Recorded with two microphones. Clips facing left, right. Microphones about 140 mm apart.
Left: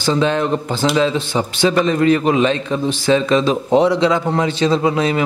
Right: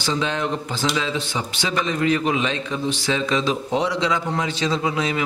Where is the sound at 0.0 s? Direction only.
50° left (ahead or behind).